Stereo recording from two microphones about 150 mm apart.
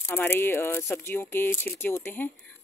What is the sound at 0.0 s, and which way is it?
Speech, 15° left (ahead or behind).